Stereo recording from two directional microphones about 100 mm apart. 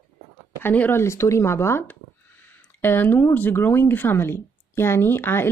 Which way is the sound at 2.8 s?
20° left (ahead or behind).